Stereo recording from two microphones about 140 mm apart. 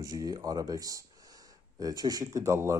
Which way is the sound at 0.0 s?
25° right (ahead or behind).